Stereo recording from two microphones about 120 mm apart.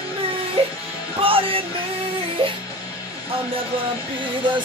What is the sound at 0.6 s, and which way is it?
Music, 50° right (ahead or behind).